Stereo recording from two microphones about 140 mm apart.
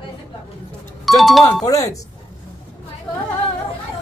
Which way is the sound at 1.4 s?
25° left (ahead or behind).